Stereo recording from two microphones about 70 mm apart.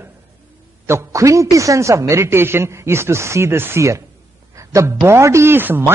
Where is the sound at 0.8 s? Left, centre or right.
Right.